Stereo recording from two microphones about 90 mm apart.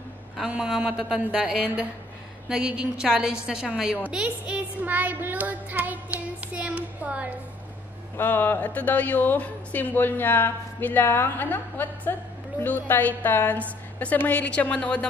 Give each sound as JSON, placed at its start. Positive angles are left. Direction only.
{"t": 0.5, "sound": "child singing", "side_deg": -10}
{"t": 8.2, "sound": "speech", "side_deg": 25}